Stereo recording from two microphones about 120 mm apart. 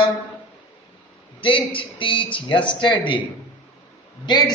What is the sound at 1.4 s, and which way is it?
A man's voice, 50° left (ahead or behind).